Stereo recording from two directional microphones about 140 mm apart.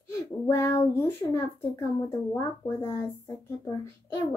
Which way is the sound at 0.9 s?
15° left (ahead or behind).